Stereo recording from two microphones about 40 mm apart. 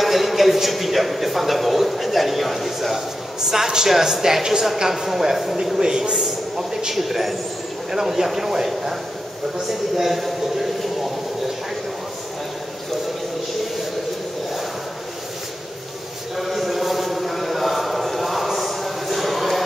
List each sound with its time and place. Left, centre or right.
0.0 s a man's voice: centre
3.3 s a woman's voice: centre
5.8 s a woman's voice: centre
16.3 s a sound: centre